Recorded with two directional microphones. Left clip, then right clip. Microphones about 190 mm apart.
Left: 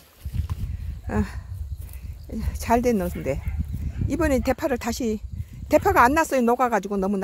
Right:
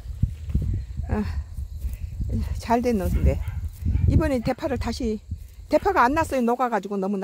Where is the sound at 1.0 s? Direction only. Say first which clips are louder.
Left 2 dB; 25° left (ahead or behind).